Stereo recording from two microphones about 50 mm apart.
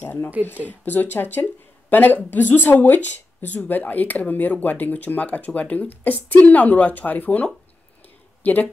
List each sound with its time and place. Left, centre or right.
0.0 s speech: left
8.4 s speech: left